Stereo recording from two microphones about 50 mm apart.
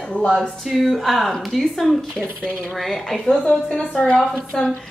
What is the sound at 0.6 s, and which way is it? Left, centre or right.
A woman's voice, centre.